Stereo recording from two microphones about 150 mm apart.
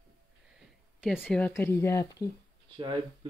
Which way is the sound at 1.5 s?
15° left (ahead or behind).